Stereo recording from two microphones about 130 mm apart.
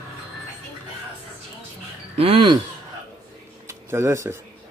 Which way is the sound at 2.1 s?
45° right (ahead or behind).